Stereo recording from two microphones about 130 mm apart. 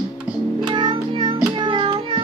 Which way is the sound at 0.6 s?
35° right (ahead or behind).